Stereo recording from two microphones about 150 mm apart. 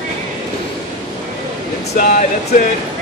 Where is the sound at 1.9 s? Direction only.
65° left (ahead or behind).